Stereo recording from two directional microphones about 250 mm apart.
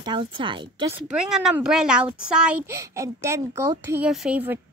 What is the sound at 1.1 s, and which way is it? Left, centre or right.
Speech, centre.